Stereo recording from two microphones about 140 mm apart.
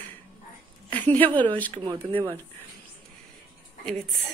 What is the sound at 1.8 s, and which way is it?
Speech, 35° right (ahead or behind).